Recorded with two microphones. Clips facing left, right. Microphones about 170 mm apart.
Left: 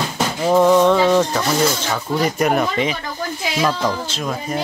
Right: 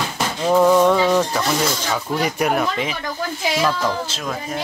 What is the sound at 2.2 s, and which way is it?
Speech, 5° right (ahead or behind).